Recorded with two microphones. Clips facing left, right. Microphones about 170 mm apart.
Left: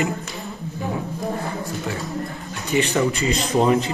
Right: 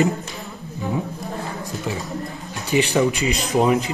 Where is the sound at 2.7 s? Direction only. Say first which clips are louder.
Right 2 dB; 15° right (ahead or behind).